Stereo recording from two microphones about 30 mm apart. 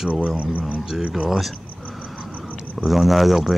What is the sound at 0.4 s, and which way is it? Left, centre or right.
Speech, right.